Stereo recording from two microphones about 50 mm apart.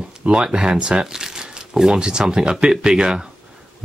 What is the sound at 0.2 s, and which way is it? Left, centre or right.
Speech, right.